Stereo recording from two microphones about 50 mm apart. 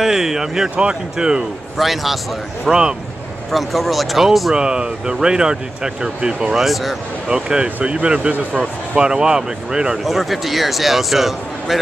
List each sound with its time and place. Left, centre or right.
0.0 s speech: centre
1.8 s a man's voice: centre
4.6 s speech: centre
6.5 s a man's voice: centre
7.2 s speech: centre
8.9 s speech: centre
10.0 s a man's voice: centre